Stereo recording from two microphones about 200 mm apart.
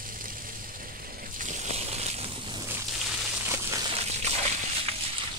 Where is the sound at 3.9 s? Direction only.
30° right (ahead or behind).